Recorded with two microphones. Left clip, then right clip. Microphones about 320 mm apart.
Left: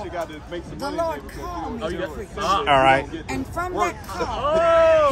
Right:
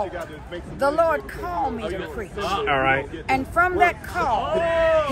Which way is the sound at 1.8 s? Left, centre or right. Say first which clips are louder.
Left 1 dB; left.